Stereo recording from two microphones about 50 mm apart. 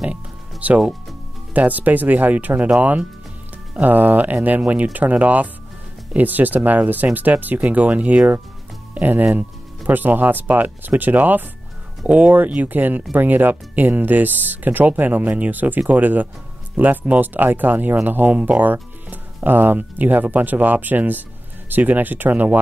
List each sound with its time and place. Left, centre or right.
0.0 s music: right
1.5 s speech: right
3.8 s speech: right